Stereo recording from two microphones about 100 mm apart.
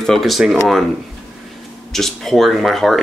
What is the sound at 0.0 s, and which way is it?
Speech, centre (ahead or behind).